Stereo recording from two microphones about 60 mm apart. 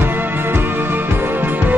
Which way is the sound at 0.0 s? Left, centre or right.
Right.